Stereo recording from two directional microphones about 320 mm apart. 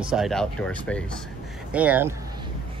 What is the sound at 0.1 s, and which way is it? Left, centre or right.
Speech, centre.